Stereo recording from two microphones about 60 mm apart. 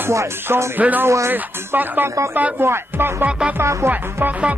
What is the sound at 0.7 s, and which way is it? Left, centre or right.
Music, right.